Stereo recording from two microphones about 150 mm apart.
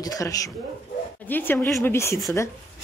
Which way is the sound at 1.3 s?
15° left (ahead or behind).